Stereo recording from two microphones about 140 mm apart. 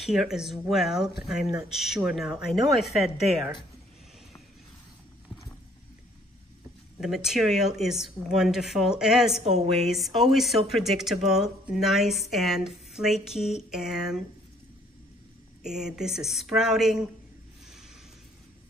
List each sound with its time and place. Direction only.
0.0 s speech: centre (ahead or behind)
7.0 s speech: 5° right (ahead or behind)
9.4 s a woman's voice: 50° right (ahead or behind)
9.7 s speech: centre (ahead or behind)
15.6 s speech: 5° right (ahead or behind)